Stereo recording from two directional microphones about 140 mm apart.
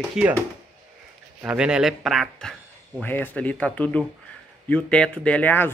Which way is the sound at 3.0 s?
10° left (ahead or behind).